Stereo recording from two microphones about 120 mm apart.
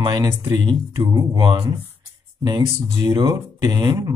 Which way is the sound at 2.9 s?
35° right (ahead or behind).